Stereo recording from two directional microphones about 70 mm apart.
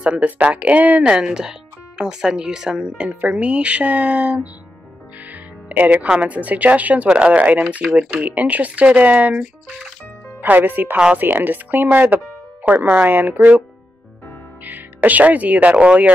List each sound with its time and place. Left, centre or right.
0.0 s speech: centre
10.4 s speech: right